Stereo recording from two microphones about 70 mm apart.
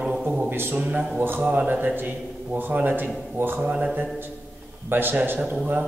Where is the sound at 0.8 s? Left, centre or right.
Centre.